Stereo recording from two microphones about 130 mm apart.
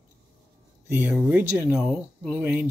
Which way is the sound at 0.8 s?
15° right (ahead or behind).